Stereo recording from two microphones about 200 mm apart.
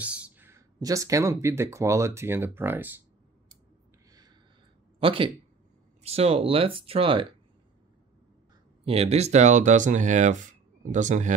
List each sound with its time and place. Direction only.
0.0 s speech: 5° right (ahead or behind)
5.0 s speech: 25° right (ahead or behind)
8.8 s speech: 30° right (ahead or behind)